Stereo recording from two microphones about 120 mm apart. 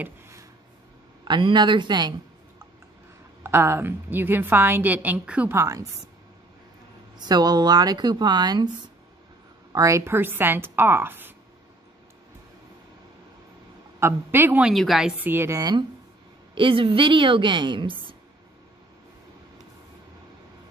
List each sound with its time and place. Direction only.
0.0 s a sound: 25° right (ahead or behind)
1.2 s speech: 40° right (ahead or behind)
3.4 s a woman's voice: 20° right (ahead or behind)
5.5 s a woman's voice: 25° right (ahead or behind)
7.2 s speech: 35° right (ahead or behind)
9.7 s a woman's voice: 25° right (ahead or behind)
13.9 s a woman's voice: 20° right (ahead or behind)
14.6 s a woman's voice: centre (ahead or behind)
15.2 s a woman's voice: 20° right (ahead or behind)
16.5 s a woman's voice: 45° right (ahead or behind)